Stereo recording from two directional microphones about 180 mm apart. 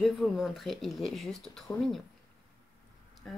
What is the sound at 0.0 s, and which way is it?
Speech, centre (ahead or behind).